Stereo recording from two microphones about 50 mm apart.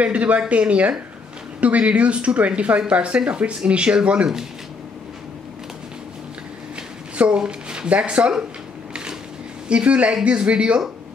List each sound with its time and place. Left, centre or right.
0.0 s speech: right
7.2 s speech: centre
9.7 s speech: right